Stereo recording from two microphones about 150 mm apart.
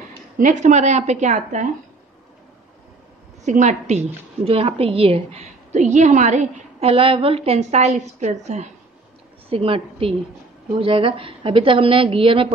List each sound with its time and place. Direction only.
0.4 s a woman's voice: 55° right (ahead or behind)
3.4 s a woman's voice: 55° right (ahead or behind)
4.5 s a woman's voice: 40° right (ahead or behind)